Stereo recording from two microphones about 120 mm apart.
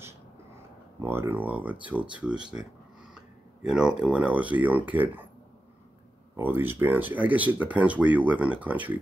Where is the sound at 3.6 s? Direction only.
5° right (ahead or behind).